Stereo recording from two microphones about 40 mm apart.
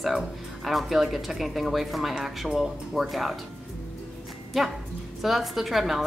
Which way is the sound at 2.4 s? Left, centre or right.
Centre.